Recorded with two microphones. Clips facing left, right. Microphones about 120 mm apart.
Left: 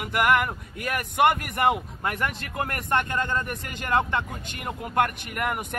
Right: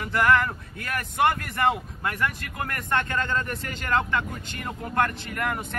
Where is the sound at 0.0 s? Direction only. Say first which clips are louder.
Right 1 dB; 15° left (ahead or behind).